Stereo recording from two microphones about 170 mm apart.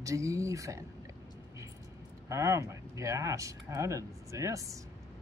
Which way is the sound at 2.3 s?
15° right (ahead or behind).